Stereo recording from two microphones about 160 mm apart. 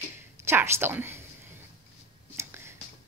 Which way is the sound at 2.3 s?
15° right (ahead or behind).